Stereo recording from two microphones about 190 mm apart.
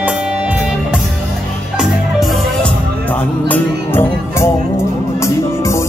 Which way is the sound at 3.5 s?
10° left (ahead or behind).